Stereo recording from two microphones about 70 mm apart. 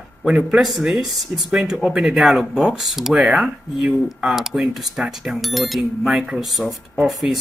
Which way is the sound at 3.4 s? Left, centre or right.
Centre.